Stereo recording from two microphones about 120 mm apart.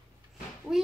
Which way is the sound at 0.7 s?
5° right (ahead or behind).